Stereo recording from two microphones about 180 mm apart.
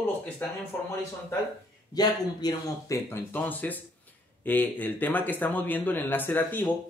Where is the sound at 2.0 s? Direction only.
20° left (ahead or behind).